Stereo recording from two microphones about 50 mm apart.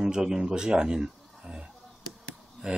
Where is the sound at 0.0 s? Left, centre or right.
Centre.